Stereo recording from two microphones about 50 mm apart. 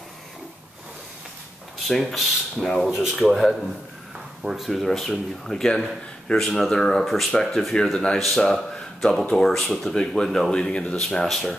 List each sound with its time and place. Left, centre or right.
1.9 s speech: centre
2.9 s speech: centre
3.3 s speech: centre
10.5 s speech: centre
11.2 s speech: centre